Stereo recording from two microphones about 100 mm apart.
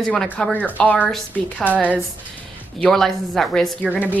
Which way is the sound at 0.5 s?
15° left (ahead or behind).